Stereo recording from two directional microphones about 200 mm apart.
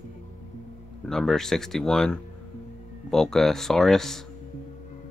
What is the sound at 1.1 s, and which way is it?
Speech, centre (ahead or behind).